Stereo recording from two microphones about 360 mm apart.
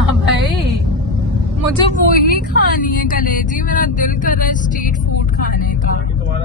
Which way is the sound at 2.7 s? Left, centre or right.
Left.